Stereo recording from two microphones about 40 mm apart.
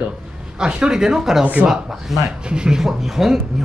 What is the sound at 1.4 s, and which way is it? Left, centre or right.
Speech, right.